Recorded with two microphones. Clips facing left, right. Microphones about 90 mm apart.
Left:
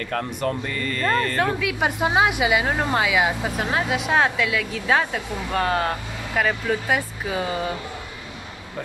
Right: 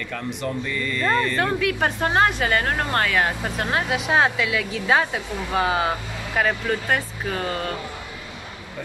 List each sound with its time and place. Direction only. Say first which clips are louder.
0.1 s speech: left 3 dB; 45° left (ahead or behind)
1.4 s speech: even; 5° left (ahead or behind)